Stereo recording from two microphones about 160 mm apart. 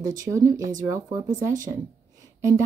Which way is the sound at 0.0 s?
20° right (ahead or behind).